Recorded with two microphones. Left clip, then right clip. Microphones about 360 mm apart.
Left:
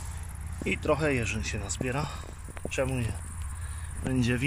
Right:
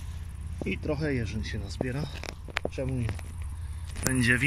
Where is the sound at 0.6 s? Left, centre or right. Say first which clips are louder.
Left 4 dB; left.